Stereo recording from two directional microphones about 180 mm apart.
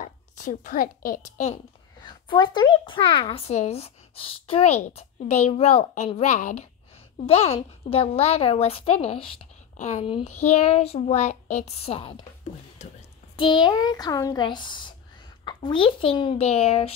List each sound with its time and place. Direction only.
0.0 s a child's voice: 45° left (ahead or behind)
2.0 s speech: 25° left (ahead or behind)
13.4 s a child's voice: 25° left (ahead or behind)